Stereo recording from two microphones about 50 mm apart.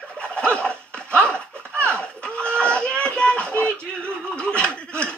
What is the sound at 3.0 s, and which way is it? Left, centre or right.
Music, centre.